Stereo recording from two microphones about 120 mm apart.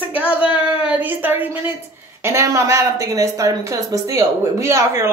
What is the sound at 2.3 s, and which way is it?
Speech, 25° right (ahead or behind).